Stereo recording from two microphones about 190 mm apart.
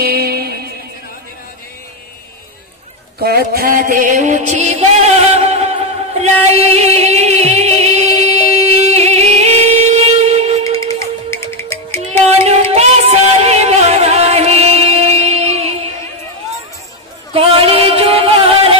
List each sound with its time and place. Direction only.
0.0 s music: 55° right (ahead or behind)
3.2 s music: 55° right (ahead or behind); by 10.8 s 35° right (ahead or behind)
11.0 s music: 15° left (ahead or behind)
12.3 s music: 35° right (ahead or behind)
17.3 s music: 30° right (ahead or behind)